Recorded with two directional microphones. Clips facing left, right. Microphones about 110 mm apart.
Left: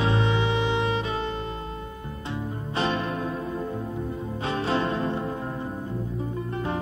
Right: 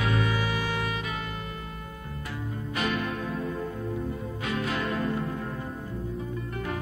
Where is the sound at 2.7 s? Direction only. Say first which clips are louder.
Left 3 dB; 30° left (ahead or behind).